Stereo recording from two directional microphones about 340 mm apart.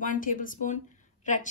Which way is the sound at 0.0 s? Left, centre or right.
Left.